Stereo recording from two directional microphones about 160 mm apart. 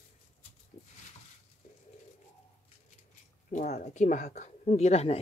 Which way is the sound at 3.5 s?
50° left (ahead or behind).